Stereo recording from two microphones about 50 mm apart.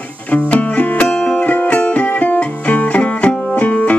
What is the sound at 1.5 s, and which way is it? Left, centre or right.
Music, left.